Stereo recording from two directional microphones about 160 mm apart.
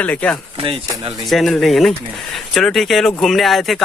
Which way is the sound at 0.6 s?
35° right (ahead or behind).